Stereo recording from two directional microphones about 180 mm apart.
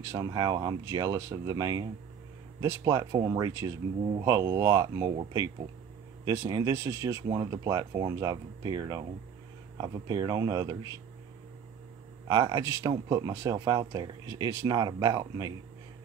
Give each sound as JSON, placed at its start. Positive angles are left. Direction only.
{"t": 0.0, "sound": "speech", "side_deg": -20}
{"t": 6.2, "sound": "speech", "side_deg": -15}
{"t": 12.3, "sound": "speech", "side_deg": -20}